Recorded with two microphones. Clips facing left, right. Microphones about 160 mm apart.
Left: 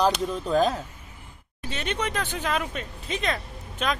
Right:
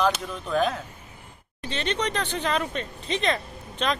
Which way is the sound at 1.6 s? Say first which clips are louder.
Right 2 dB; 10° left (ahead or behind).